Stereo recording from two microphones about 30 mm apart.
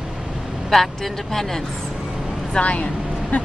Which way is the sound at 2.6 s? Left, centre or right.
Left.